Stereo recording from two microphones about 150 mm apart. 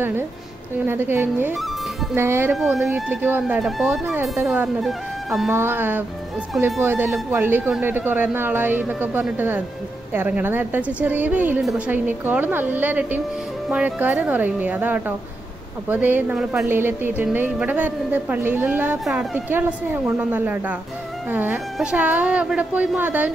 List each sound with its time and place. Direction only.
0.8 s a woman's voice: 15° right (ahead or behind)
2.5 s speech: centre (ahead or behind)
3.1 s a woman's voice: 10° right (ahead or behind)
5.5 s a woman's voice: 15° right (ahead or behind)